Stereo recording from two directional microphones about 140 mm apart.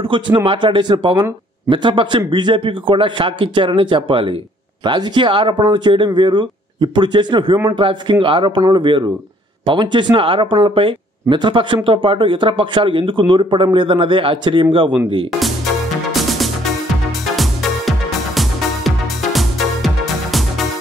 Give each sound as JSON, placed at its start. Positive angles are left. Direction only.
{"t": 0.0, "sound": "speech", "side_deg": -35}
{"t": 16.1, "sound": "music", "side_deg": 0}